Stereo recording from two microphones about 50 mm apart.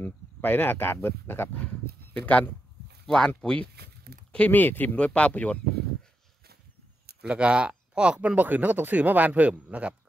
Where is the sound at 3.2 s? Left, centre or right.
Centre.